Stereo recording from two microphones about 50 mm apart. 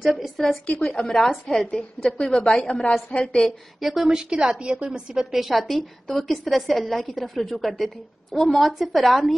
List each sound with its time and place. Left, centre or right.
0.0 s a woman's voice: centre
0.7 s a woman's voice: centre
3.8 s a woman's voice: centre
5.3 s a woman's voice: centre